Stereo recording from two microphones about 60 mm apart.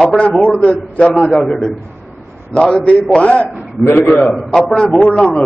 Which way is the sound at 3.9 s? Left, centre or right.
Left.